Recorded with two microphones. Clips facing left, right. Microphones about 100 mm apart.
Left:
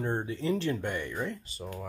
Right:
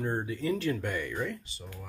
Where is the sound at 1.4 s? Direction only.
45° left (ahead or behind).